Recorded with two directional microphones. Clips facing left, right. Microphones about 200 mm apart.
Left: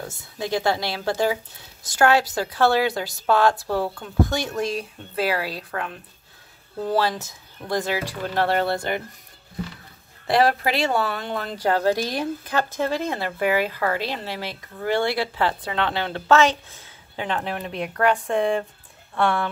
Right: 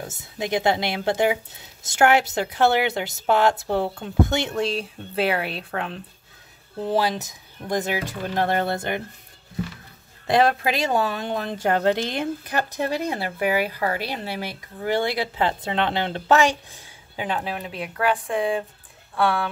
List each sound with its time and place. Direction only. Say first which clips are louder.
0.1 s a woman's voice: right 1 dB; 20° right (ahead or behind)
10.2 s speech: even; 20° right (ahead or behind); by 19.5 s 5° right (ahead or behind)